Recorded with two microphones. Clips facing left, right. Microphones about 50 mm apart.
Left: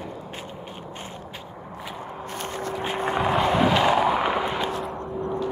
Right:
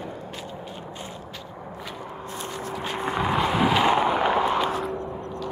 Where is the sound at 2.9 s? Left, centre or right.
Centre.